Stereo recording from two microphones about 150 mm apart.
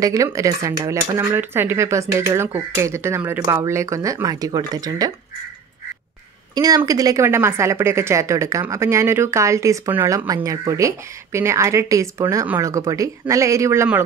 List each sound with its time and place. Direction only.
0.0 s a woman's voice: 20° right (ahead or behind)
6.5 s a woman's voice: 25° right (ahead or behind)